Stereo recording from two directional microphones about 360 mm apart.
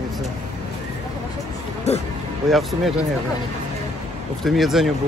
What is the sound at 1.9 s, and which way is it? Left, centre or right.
Speech, centre.